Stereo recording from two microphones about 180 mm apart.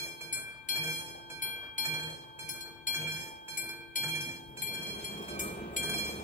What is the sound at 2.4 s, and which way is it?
Train, 45° left (ahead or behind).